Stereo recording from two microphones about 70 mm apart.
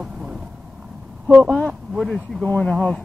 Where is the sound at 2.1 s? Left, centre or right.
Centre.